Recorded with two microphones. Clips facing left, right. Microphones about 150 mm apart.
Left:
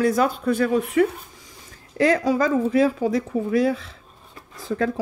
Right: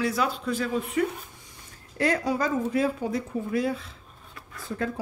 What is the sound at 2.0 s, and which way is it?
Speech, 90° left.